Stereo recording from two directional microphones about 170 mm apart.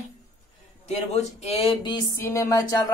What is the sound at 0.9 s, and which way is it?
Speech, 40° left (ahead or behind).